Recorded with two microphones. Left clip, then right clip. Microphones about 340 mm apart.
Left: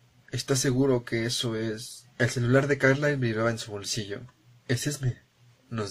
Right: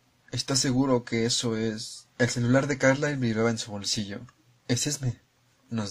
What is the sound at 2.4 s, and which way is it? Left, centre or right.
Speech, centre.